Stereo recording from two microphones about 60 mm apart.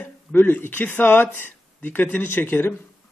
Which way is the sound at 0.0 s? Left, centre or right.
Left.